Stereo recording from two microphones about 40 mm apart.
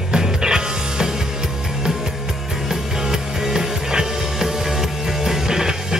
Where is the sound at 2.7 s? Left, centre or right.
Centre.